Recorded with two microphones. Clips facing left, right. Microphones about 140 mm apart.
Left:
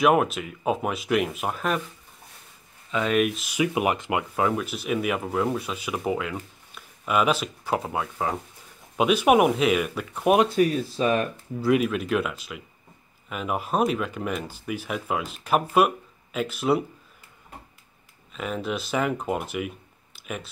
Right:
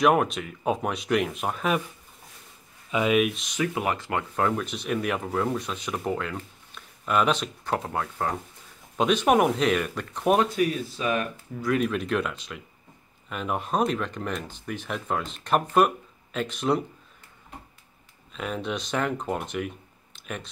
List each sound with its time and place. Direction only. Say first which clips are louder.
0.0 s speech: left 1 dB; 5° left (ahead or behind)
2.9 s speech: right 2 dB; 10° right (ahead or behind)
3.2 s speech: left 1 dB; centre (ahead or behind)
10.5 s speech: left 4 dB; 35° left (ahead or behind)
11.8 s speech: left 1 dB; 5° left (ahead or behind)
18.3 s speech: left 1 dB; centre (ahead or behind)